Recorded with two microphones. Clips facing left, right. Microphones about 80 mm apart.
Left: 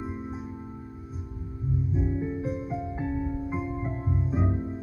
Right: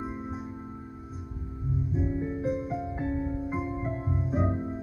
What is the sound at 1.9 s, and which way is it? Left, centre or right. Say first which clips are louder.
Music: even; centre.